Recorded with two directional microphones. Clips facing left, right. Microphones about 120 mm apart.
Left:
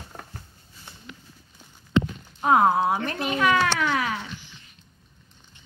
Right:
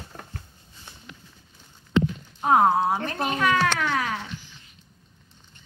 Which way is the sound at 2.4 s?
40° right (ahead or behind).